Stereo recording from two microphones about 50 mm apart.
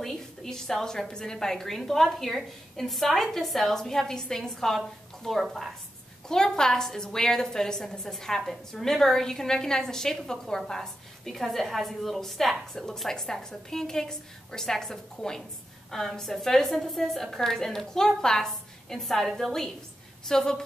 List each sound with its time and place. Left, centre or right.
0.0 s a woman's voice: centre
6.2 s a woman's voice: centre